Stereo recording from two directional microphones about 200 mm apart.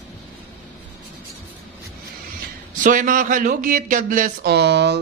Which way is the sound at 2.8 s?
40° right (ahead or behind).